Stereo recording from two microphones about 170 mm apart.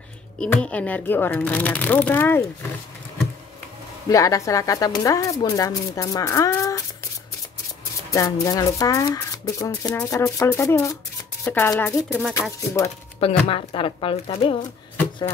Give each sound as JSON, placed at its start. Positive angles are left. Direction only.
{"t": 0.4, "sound": "speech", "side_deg": 5}
{"t": 4.1, "sound": "speech", "side_deg": 20}
{"t": 8.1, "sound": "speech", "side_deg": 20}
{"t": 12.1, "sound": "speech", "side_deg": 0}
{"t": 12.4, "sound": "speech", "side_deg": 20}
{"t": 13.2, "sound": "speech", "side_deg": 35}